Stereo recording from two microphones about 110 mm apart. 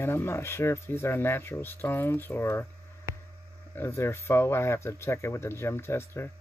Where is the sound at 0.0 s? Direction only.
20° left (ahead or behind).